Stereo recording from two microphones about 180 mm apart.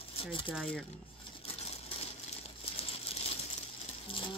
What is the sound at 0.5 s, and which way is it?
Speech, centre (ahead or behind).